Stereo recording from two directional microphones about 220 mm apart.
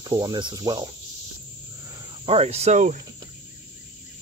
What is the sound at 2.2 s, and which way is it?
Cricket, 30° right (ahead or behind).